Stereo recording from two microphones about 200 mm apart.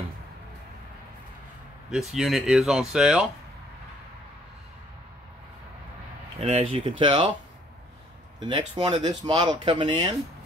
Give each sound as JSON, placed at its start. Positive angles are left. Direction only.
{"t": 1.9, "sound": "speech", "side_deg": 0}
{"t": 6.4, "sound": "speech", "side_deg": -30}
{"t": 8.4, "sound": "speech", "side_deg": -25}